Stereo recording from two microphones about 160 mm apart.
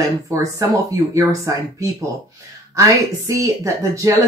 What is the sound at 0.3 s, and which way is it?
Speech, 20° right (ahead or behind).